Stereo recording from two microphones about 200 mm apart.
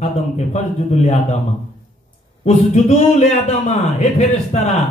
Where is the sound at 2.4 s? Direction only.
35° left (ahead or behind).